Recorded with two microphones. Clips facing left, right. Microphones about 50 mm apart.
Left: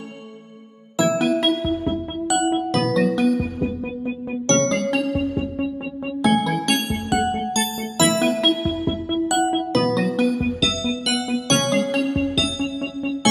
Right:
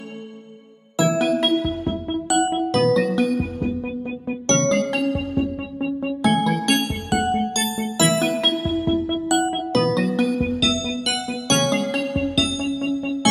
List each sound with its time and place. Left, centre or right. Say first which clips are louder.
0.9 s music: even; centre